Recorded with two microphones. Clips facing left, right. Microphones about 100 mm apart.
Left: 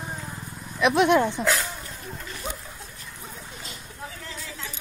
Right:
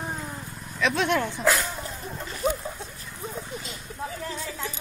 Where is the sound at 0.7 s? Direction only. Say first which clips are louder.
Left 5 dB; 15° left (ahead or behind).